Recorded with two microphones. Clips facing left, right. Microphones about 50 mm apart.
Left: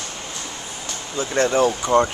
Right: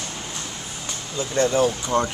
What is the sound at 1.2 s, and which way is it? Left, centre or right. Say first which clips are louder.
Speech: left 2 dB; left.